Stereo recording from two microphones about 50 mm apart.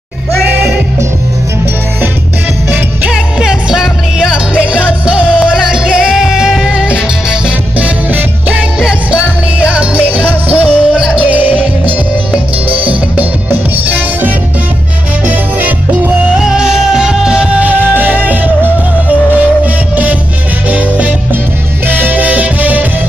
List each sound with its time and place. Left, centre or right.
3.1 s music: centre
7.8 s music: right
11.2 s music: right
16.3 s music: centre
17.6 s music: right